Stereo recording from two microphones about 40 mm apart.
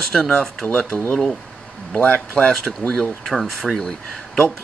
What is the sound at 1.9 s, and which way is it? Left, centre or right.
Speech, left.